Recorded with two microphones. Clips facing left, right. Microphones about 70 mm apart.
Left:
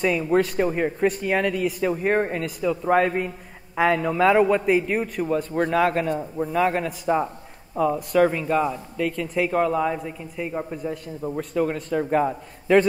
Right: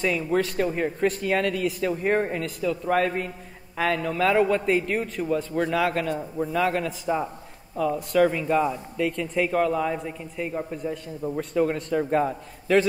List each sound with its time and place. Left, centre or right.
0.0 s speech: centre
1.0 s speech: centre
10.5 s speech: centre